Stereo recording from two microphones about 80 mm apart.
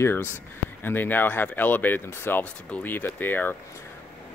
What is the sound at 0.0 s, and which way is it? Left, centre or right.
Speech, left.